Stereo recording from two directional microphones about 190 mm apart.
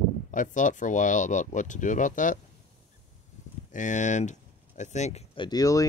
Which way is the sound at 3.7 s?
40° left (ahead or behind).